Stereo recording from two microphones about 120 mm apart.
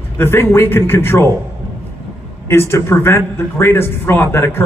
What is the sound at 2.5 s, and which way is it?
A man's voice, 20° left (ahead or behind).